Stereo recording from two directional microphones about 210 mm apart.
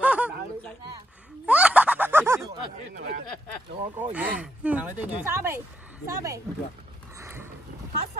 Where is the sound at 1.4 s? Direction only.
5° right (ahead or behind).